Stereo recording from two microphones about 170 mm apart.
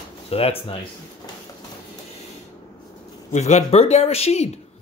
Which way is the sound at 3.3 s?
45° left (ahead or behind).